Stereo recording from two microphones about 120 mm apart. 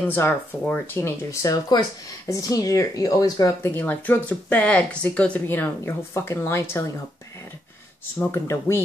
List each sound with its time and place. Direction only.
0.0 s speech: 15° left (ahead or behind)
3.7 s speech: 15° left (ahead or behind)
8.2 s speech: 20° left (ahead or behind)